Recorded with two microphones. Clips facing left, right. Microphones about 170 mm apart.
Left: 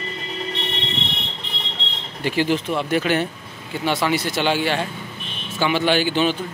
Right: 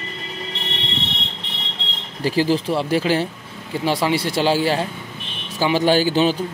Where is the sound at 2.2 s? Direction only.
35° right (ahead or behind).